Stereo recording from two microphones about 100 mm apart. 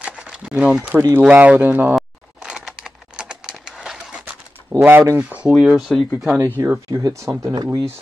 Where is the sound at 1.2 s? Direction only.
15° right (ahead or behind).